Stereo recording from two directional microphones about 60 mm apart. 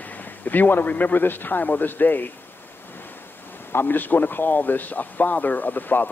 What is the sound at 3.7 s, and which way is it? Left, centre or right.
Speech, left.